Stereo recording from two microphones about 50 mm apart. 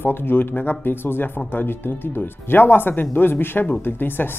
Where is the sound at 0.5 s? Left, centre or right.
Left.